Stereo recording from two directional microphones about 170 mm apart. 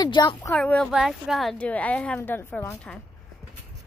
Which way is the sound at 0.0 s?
25° left (ahead or behind).